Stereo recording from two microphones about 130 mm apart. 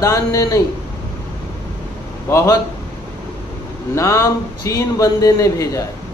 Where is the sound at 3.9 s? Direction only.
25° left (ahead or behind).